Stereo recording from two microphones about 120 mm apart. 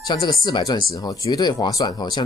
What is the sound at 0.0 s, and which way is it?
Speech, 35° left (ahead or behind).